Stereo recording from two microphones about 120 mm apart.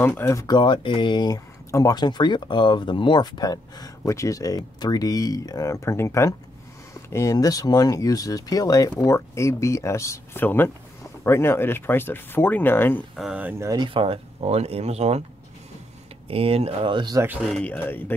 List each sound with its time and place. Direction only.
0.0 s speech: 20° left (ahead or behind)
13.1 s speech: centre (ahead or behind)
13.4 s speech: 15° right (ahead or behind)
13.7 s speech: 40° right (ahead or behind); by 15.2 s 60° right (ahead or behind)
16.3 s speech: 50° right (ahead or behind)
17.5 s speech: 10° left (ahead or behind)